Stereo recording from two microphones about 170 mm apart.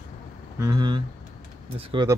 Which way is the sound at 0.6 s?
25° right (ahead or behind).